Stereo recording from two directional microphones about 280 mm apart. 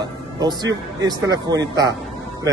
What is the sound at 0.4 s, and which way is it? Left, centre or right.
A man's voice, centre.